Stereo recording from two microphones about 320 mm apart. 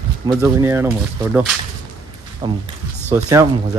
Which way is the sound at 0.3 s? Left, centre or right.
Centre.